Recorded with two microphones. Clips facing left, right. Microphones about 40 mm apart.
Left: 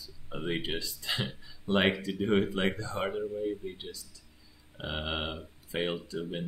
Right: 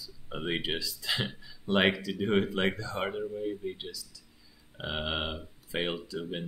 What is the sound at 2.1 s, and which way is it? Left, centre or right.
Speech, centre.